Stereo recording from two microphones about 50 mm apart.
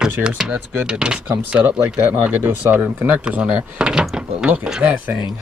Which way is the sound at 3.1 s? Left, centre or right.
Right.